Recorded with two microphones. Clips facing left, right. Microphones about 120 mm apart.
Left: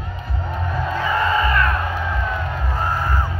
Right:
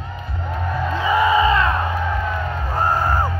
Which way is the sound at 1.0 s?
15° right (ahead or behind).